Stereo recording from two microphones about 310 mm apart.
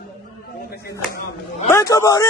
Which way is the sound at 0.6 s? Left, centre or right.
Left.